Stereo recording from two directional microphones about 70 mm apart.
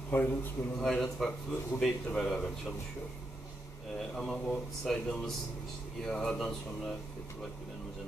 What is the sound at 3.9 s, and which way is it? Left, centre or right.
Speech, centre.